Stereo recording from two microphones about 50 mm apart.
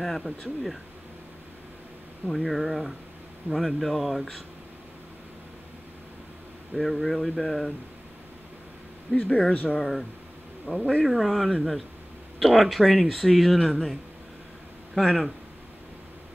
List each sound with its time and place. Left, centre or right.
0.0 s speech: centre
2.3 s speech: centre
6.7 s speech: centre
9.3 s speech: left
9.8 s speech: centre
10.7 s speech: right
11.1 s speech: centre
15.0 s speech: centre